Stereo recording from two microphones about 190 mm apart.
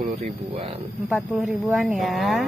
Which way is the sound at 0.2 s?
30° right (ahead or behind).